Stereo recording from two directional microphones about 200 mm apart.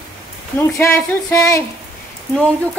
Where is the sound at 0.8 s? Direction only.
15° left (ahead or behind).